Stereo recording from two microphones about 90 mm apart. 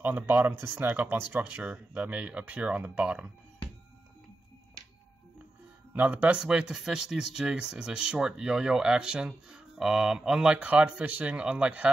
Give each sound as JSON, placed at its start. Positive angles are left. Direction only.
{"t": 0.0, "sound": "speech", "side_deg": -20}
{"t": 5.9, "sound": "speech", "side_deg": -15}